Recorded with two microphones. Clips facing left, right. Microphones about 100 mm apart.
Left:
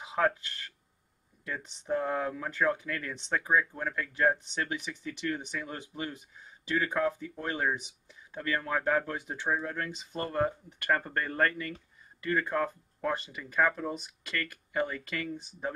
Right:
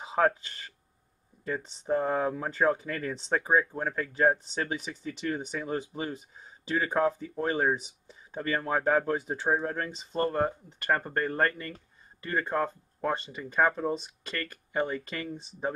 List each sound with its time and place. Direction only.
0.0 s a sound: 35° right (ahead or behind)
1.4 s speech: 35° right (ahead or behind)
5.6 s speech: 25° right (ahead or behind)